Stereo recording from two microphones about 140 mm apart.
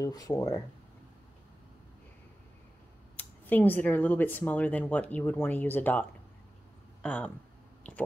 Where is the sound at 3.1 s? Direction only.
15° left (ahead or behind).